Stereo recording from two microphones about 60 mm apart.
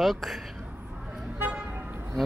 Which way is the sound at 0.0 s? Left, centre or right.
Centre.